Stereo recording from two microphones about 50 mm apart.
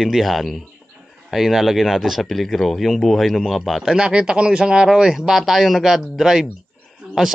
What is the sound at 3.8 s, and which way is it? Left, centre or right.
Speech, centre.